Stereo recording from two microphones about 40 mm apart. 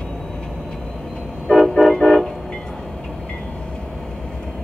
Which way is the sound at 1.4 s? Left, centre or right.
Centre.